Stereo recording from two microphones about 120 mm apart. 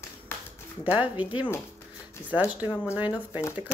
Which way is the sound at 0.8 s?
15° right (ahead or behind).